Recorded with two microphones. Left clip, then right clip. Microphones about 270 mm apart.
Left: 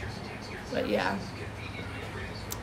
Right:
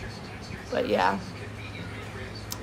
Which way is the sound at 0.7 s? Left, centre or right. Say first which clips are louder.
Right 5 dB; centre.